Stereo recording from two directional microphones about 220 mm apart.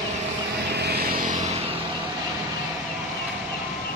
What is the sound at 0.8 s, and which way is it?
Vehicle, 45° right (ahead or behind).